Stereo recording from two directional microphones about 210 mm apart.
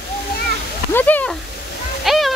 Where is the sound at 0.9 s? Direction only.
10° left (ahead or behind).